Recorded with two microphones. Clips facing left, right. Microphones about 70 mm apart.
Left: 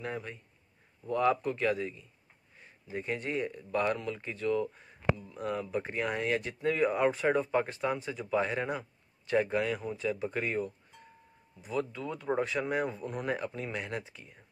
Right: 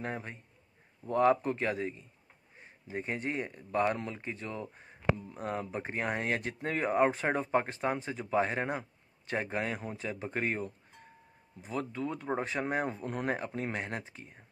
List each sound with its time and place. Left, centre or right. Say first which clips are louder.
0.0 s speech: even; right